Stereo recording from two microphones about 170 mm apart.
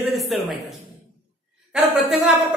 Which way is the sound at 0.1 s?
Centre (ahead or behind).